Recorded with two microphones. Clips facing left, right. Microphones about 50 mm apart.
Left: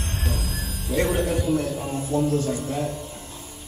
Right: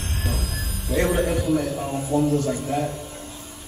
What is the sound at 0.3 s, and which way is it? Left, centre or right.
Music, centre.